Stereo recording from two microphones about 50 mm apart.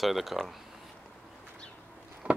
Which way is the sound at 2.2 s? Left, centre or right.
Right.